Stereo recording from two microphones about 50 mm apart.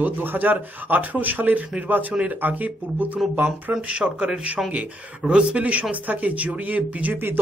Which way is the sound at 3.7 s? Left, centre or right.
Centre.